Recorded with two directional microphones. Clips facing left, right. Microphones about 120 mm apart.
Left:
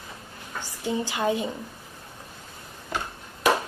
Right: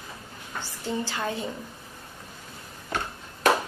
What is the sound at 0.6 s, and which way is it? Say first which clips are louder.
Speech: left 3 dB; 15° left (ahead or behind).